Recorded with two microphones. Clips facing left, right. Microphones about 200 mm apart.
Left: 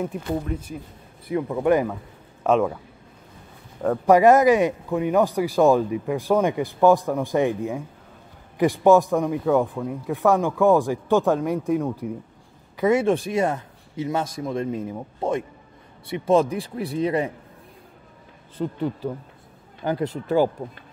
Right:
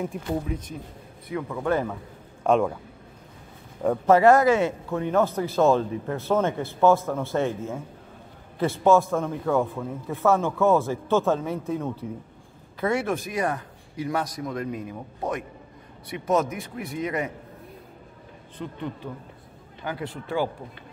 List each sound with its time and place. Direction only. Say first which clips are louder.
0.0 s speech: left 2 dB; centre (ahead or behind)
1.3 s a man's voice: left 6 dB; 20° left (ahead or behind)
2.4 s speech: left 1 dB; 5° left (ahead or behind)
4.0 s a man's voice: left 2 dB; 15° left (ahead or behind)
13.0 s a man's voice: left 5 dB; 30° left (ahead or behind)
18.6 s speech: left 8 dB; 45° left (ahead or behind)
19.8 s speech: left 7 dB; 40° left (ahead or behind)